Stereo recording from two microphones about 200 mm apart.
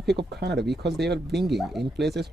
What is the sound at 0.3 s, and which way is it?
Speech, 55° right (ahead or behind).